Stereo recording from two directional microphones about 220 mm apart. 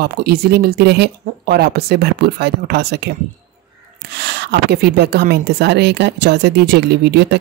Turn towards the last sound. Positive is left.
turn(degrees=-50)  # may be behind; listen again after turning